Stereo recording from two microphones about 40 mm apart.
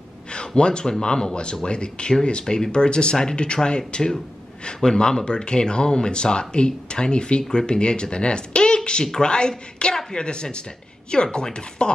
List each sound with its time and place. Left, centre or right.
0.6 s a woman's voice: left